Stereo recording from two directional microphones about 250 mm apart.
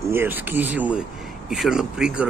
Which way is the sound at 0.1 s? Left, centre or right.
Centre.